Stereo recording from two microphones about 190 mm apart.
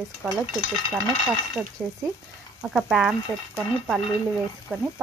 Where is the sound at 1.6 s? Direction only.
Centre (ahead or behind).